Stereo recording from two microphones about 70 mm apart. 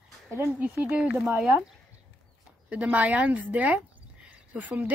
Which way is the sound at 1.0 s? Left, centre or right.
Centre.